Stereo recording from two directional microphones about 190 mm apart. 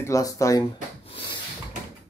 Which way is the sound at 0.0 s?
15° left (ahead or behind).